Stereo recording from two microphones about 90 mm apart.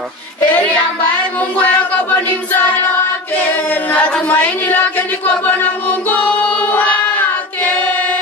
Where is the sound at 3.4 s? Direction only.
15° left (ahead or behind).